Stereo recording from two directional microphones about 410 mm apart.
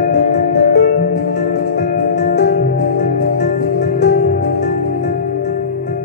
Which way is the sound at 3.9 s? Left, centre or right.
Left.